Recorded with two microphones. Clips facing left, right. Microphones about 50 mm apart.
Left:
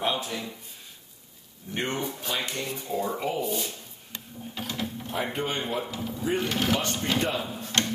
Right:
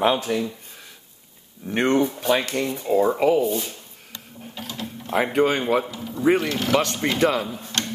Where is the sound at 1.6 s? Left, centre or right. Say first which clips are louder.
Right 11 dB; right.